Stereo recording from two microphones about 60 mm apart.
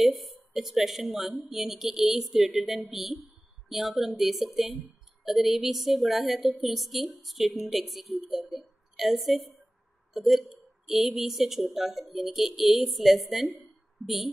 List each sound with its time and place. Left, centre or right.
0.0 s a woman's voice: centre